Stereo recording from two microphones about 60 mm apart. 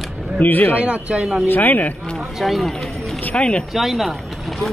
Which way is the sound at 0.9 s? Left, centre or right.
Centre.